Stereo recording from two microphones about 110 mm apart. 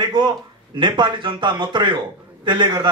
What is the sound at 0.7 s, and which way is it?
Speech, 45° right (ahead or behind).